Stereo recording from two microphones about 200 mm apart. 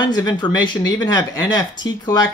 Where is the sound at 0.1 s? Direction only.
20° left (ahead or behind).